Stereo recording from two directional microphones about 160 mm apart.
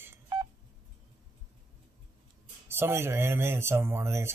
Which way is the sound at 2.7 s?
15° right (ahead or behind).